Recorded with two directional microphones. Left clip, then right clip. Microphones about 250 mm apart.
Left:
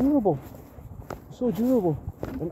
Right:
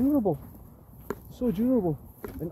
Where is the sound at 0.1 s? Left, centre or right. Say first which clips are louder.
Left 3 dB; centre.